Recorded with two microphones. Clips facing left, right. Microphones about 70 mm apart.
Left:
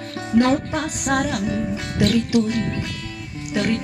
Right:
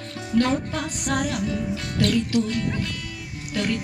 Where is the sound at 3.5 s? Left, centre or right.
Centre.